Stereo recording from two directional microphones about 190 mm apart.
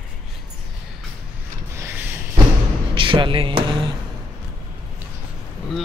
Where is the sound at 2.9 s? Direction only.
25° right (ahead or behind).